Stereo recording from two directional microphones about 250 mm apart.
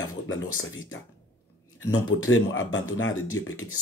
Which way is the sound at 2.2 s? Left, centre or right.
Left.